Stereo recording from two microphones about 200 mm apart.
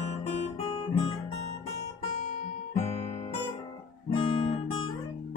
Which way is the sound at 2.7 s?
30° left (ahead or behind).